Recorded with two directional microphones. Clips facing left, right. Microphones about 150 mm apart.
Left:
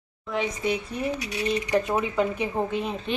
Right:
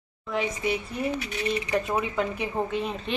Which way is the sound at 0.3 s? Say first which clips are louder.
Left 1 dB; 5° right (ahead or behind).